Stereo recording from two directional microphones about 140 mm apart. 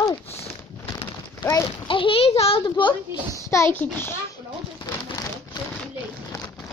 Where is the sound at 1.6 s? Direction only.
40° left (ahead or behind).